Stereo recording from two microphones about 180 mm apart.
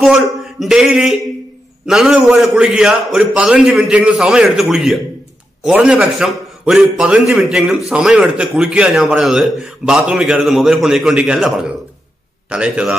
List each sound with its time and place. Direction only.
0.0 s a man's voice: centre (ahead or behind)